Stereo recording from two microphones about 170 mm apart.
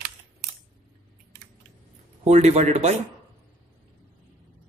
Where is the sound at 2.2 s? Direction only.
40° right (ahead or behind).